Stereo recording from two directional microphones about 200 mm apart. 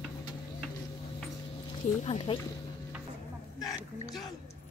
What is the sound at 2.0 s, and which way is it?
Speech, 30° left (ahead or behind).